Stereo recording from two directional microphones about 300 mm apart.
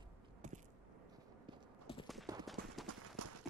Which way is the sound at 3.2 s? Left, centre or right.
Right.